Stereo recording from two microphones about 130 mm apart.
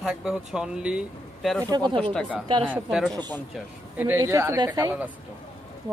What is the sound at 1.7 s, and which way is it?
Speech, 35° right (ahead or behind).